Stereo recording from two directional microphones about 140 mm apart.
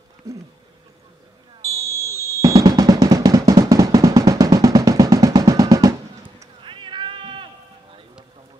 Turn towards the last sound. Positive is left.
turn(degrees=-35)  # may be behind; listen again after turning